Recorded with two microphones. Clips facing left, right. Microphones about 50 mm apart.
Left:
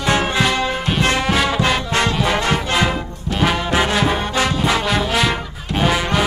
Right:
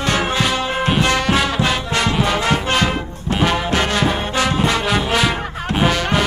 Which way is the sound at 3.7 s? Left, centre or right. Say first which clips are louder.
Left 1 dB; centre.